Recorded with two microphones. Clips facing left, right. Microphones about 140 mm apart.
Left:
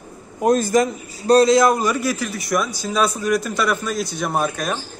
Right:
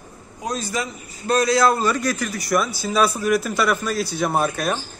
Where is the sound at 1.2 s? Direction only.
35° left (ahead or behind).